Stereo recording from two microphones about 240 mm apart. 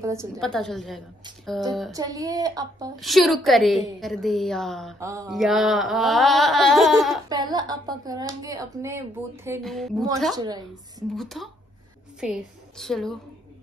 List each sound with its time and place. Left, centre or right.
0.0 s speech: centre
0.4 s a woman's voice: centre
1.9 s speech: centre
3.0 s a woman's voice: centre
5.0 s speech: centre
5.3 s a woman's voice: centre
7.2 s speech: centre
9.6 s a woman's voice: centre
10.3 s speech: centre
11.1 s a woman's voice: centre